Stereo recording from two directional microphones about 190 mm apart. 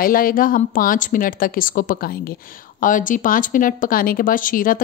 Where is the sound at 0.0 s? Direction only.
50° left (ahead or behind).